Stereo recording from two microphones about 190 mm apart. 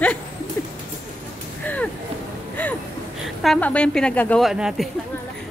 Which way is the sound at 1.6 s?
10° left (ahead or behind).